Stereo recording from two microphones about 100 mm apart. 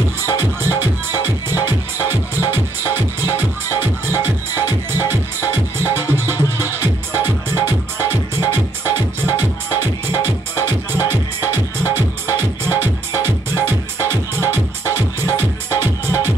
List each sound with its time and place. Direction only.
0.4 s music: 20° right (ahead or behind)